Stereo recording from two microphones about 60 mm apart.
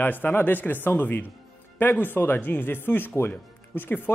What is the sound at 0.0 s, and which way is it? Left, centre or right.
Speech, left.